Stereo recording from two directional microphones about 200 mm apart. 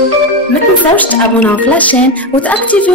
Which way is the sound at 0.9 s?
10° left (ahead or behind).